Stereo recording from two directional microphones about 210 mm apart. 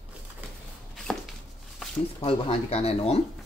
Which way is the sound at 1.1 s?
5° left (ahead or behind).